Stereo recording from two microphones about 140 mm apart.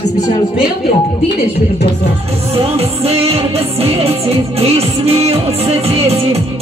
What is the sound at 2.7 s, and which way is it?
Music, 45° right (ahead or behind).